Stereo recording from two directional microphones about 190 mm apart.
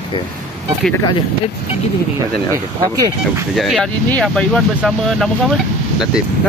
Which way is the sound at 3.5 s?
Centre (ahead or behind).